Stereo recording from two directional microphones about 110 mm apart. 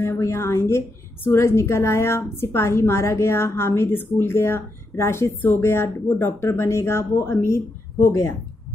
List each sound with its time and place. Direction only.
0.0 s a woman's voice: 25° left (ahead or behind)